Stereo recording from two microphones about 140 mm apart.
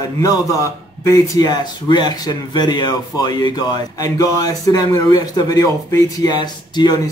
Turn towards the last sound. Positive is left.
turn(degrees=30)  # may be behind; listen again after turning